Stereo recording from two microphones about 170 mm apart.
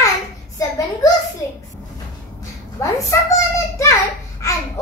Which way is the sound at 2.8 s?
20° left (ahead or behind).